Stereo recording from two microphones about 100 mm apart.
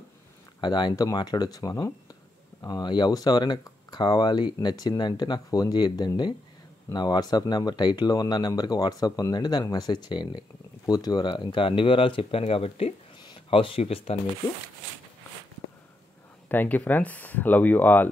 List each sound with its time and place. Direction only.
0.6 s speech: 45° left (ahead or behind); by 12.9 s 80° left
13.2 s speech: 55° left (ahead or behind); by 14.1 s 75° left (ahead or behind)
16.4 s speech: 15° left (ahead or behind)